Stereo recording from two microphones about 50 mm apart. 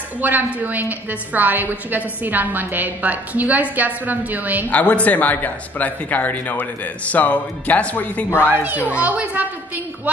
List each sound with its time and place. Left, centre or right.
0.2 s a woman's voice: right
4.6 s speech: left
8.3 s a woman's voice: left
8.6 s a woman's voice: right